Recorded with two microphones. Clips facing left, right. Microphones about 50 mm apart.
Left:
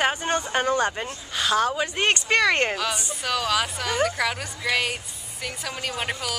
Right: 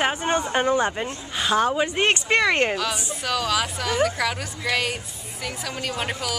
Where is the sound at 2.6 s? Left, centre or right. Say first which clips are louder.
Right 2 dB; centre.